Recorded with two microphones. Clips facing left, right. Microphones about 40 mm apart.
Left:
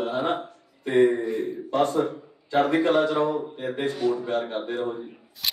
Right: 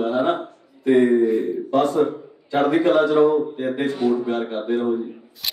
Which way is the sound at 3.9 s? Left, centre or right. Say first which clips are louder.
Right 3 dB; right.